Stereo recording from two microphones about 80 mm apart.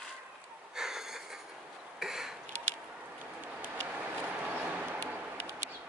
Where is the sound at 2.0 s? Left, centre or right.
Centre.